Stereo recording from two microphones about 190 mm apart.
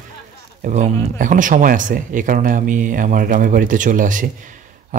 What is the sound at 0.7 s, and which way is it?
Speech, 40° right (ahead or behind).